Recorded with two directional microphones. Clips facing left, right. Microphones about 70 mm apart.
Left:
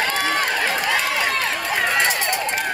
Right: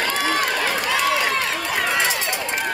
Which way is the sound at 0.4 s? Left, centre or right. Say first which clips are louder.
Left 1 dB; left.